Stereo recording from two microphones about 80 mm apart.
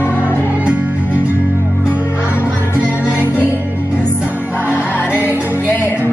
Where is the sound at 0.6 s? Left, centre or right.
Centre.